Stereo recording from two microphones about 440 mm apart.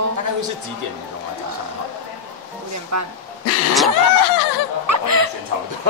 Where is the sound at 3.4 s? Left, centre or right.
Left.